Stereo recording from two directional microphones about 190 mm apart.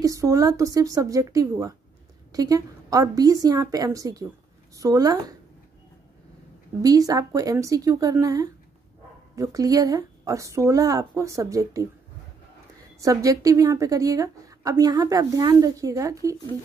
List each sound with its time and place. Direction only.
0.0 s a woman's voice: 15° right (ahead or behind)
6.8 s a woman's voice: 20° right (ahead or behind)
13.0 s a woman's voice: 15° right (ahead or behind)